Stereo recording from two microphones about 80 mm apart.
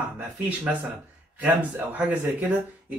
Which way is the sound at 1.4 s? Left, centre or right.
Right.